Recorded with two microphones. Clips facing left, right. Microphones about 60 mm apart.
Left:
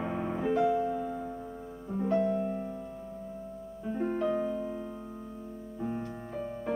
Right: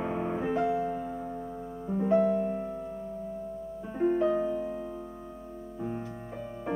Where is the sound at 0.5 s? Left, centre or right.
Centre.